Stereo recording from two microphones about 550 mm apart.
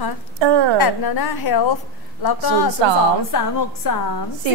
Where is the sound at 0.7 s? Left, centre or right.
Left.